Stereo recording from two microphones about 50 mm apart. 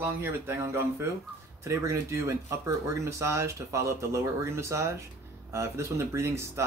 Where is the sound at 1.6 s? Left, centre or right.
Right.